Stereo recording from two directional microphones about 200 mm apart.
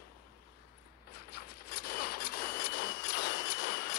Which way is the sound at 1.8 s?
50° left (ahead or behind).